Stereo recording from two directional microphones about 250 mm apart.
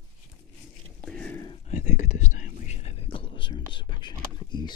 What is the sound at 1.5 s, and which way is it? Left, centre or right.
Whispering, left.